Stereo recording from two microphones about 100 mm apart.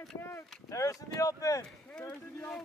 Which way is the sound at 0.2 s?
30° left (ahead or behind).